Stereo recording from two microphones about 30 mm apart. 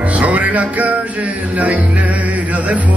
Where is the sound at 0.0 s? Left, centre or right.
Right.